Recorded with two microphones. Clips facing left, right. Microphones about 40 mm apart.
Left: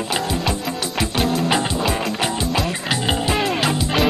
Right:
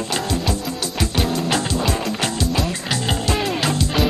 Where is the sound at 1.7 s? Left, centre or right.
Centre.